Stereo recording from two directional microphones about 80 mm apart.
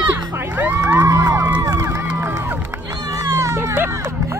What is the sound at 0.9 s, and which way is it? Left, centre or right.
Music, right.